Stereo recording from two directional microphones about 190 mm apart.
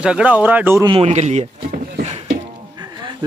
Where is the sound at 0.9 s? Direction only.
30° right (ahead or behind).